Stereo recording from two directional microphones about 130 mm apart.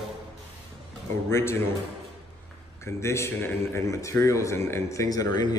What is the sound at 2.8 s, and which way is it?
Speech, 20° left (ahead or behind).